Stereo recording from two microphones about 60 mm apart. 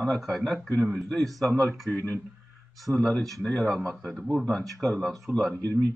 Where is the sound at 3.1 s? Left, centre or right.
Centre.